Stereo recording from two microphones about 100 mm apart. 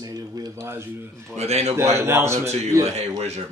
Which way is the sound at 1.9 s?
25° right (ahead or behind).